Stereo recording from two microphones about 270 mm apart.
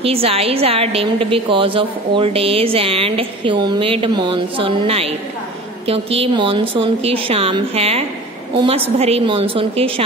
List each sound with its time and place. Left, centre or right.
0.0 s a woman's voice: right